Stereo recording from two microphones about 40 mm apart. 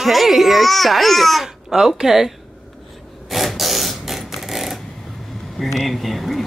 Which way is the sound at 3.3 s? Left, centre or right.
Centre.